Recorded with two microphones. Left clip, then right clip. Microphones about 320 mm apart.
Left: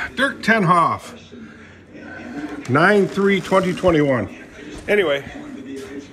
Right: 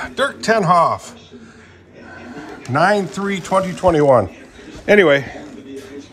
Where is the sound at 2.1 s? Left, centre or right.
Right.